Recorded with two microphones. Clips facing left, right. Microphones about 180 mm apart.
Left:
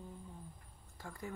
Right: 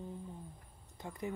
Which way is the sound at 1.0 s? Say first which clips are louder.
Right 5 dB; 20° right (ahead or behind).